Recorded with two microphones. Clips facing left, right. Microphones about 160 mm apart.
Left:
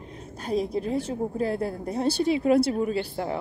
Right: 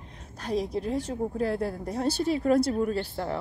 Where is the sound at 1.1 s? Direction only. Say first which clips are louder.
Left 1 dB; 10° left (ahead or behind).